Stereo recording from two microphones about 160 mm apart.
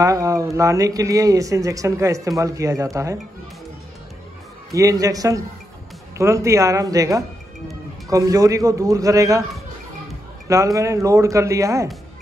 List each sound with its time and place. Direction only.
0.0 s speech: 20° right (ahead or behind)
4.7 s speech: 20° right (ahead or behind)
10.5 s speech: 20° right (ahead or behind)